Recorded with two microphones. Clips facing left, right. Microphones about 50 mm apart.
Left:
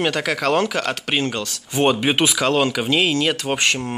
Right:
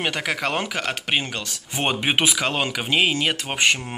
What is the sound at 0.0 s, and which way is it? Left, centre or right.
Speech, centre.